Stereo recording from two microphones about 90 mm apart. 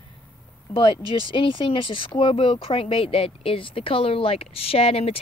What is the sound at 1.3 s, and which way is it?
Speech, 65° left (ahead or behind).